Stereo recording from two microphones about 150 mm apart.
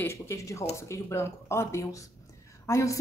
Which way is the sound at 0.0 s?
20° left (ahead or behind).